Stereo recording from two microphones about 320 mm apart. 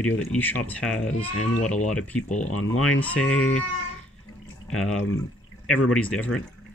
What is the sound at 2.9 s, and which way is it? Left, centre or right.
Speech, centre.